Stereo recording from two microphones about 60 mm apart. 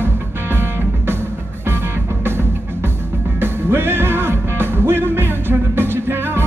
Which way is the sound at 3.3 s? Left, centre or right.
Right.